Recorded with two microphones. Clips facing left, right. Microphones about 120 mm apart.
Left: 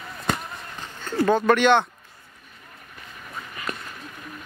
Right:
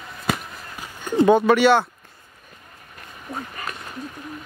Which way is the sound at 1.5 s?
5° right (ahead or behind).